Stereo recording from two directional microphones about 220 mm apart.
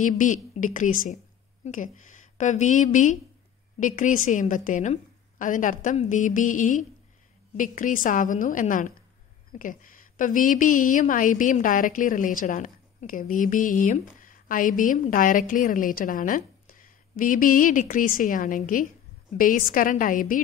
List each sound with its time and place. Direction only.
0.0 s a woman's voice: 35° left (ahead or behind)